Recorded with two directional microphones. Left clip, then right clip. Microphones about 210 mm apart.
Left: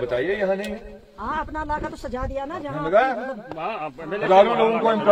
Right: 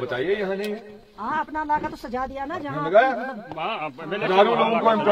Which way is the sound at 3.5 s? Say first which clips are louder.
Right 2 dB; 45° right (ahead or behind).